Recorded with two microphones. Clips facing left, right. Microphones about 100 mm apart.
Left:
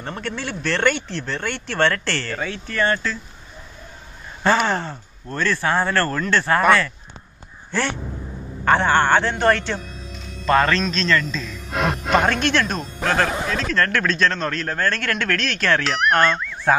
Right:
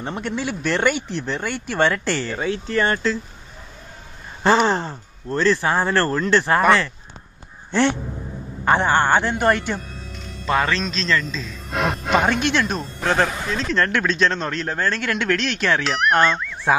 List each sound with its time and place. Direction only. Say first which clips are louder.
0.0 s speech: right 3 dB; 15° right (ahead or behind)
4.4 s speech: right 2 dB; 25° right (ahead or behind)
7.7 s speech: right 5 dB; 20° right (ahead or behind)
11.7 s music: left 1 dB; centre (ahead or behind)
12.3 s speech: even; 15° right (ahead or behind)
15.8 s speech: right 1 dB; centre (ahead or behind)